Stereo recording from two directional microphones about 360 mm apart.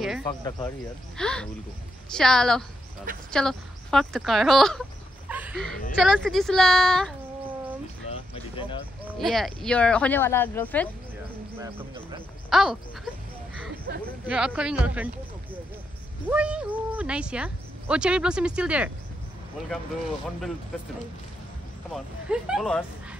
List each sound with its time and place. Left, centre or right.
0.2 s speech: centre
5.3 s a sound: centre
5.9 s speech: centre
8.1 s a sound: centre
9.0 s speech: centre
11.6 s speech: centre
12.4 s speech: centre
13.9 s a sound: right
14.2 s speech: centre
16.3 s speech: centre
21.9 s speech: centre